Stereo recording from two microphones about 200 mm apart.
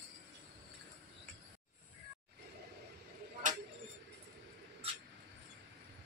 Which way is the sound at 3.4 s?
40° right (ahead or behind).